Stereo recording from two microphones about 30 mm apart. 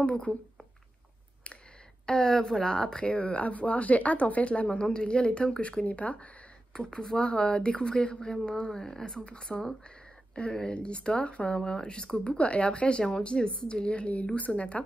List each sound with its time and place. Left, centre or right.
0.0 s speech: left
2.0 s a woman's voice: left
3.1 s speech: left
4.9 s speech: left
5.6 s speech: left
6.7 s speech: left
8.7 s speech: centre
9.0 s speech: left
12.4 s speech: left